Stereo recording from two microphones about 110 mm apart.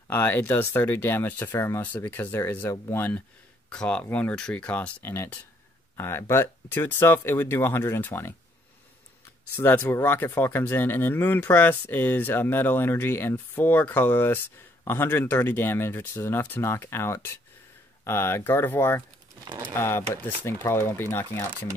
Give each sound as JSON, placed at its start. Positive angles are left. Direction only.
{"t": 0.1, "sound": "speech", "side_deg": 20}
{"t": 9.6, "sound": "speech", "side_deg": 20}